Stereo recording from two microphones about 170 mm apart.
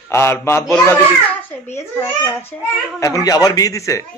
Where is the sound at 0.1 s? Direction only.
15° left (ahead or behind).